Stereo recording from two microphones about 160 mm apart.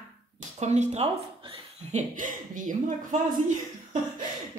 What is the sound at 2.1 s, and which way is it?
Speech, 55° right (ahead or behind).